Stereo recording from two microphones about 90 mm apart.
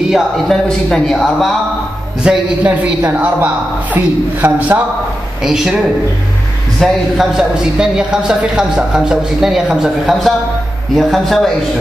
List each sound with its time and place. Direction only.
0.1 s a woman's voice: 5° left (ahead or behind)
2.2 s a woman's voice: 15° right (ahead or behind)
5.4 s a woman's voice: 5° right (ahead or behind)
6.8 s a woman's voice: 5° right (ahead or behind)